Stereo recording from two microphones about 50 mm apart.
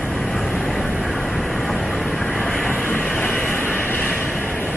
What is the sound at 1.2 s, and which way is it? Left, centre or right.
Vehicle, centre.